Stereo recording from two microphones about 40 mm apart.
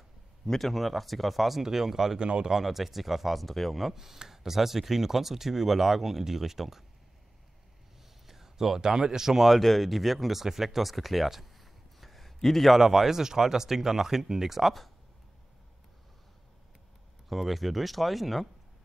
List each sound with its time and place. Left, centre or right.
0.5 s speech: centre
2.1 s speech: right
2.5 s speech: centre
8.3 s speech: centre
9.5 s speech: centre
12.7 s speech: centre
17.3 s speech: centre